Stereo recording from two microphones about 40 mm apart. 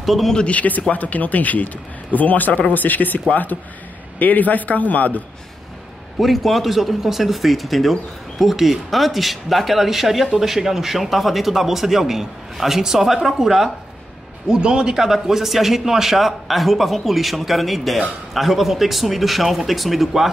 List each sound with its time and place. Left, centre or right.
0.0 s a man's voice: centre
0.5 s a man's voice: left
4.2 s a man's voice: left
6.1 s speech: centre
14.5 s a man's voice: right
15.0 s speech: centre